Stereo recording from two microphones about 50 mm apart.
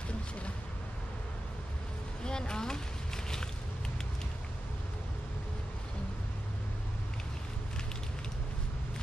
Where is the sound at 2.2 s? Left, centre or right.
Centre.